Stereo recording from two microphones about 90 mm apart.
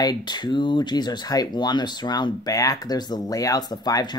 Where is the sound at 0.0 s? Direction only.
50° left (ahead or behind).